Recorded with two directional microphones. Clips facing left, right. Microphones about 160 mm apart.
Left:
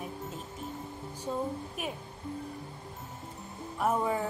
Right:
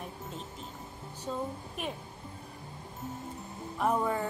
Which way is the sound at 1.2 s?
10° left (ahead or behind).